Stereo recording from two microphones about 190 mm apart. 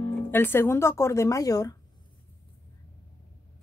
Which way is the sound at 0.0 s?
10° left (ahead or behind).